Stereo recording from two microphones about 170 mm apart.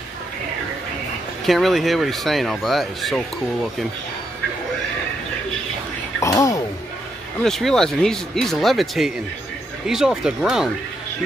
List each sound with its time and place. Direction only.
1.4 s speech: centre (ahead or behind)
6.1 s a sound: 20° left (ahead or behind)
7.4 s speech: centre (ahead or behind)